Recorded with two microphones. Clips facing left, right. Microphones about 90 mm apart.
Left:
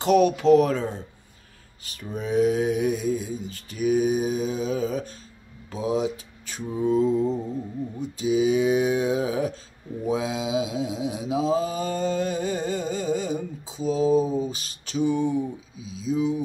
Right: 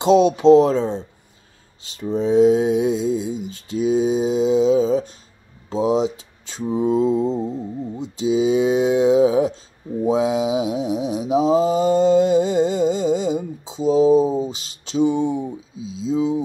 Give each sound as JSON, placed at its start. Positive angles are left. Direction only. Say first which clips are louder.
{"t": 0.0, "sound": "mantra", "louder": "right 5 dB", "side_deg": -20}